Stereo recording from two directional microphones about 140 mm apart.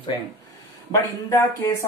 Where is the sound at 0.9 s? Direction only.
20° left (ahead or behind).